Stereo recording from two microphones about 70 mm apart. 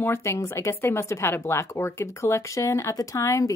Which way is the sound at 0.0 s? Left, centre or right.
Left.